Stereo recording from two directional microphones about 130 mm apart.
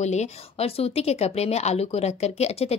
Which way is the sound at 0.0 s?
60° left (ahead or behind).